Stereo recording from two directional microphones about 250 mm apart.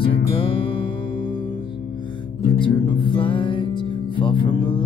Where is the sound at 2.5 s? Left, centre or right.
Centre.